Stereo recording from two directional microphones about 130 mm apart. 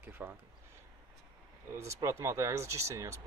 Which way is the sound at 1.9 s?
20° right (ahead or behind).